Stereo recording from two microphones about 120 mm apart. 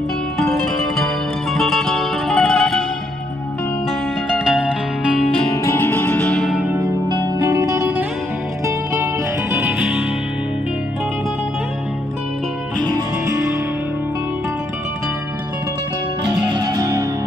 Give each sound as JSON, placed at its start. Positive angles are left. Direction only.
{"t": 0.5, "sound": "music", "side_deg": 0}
{"t": 4.5, "sound": "music", "side_deg": -5}
{"t": 5.6, "sound": "music", "side_deg": 20}
{"t": 6.5, "sound": "music", "side_deg": -10}
{"t": 7.4, "sound": "music", "side_deg": -25}
{"t": 9.5, "sound": "music", "side_deg": -15}
{"t": 12.9, "sound": "music", "side_deg": -25}
{"t": 16.4, "sound": "music", "side_deg": -35}